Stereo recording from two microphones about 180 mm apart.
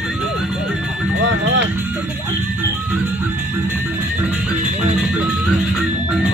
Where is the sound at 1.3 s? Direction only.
90° right.